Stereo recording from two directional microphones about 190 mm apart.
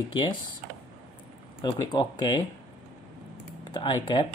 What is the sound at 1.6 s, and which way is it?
Speech, 25° left (ahead or behind).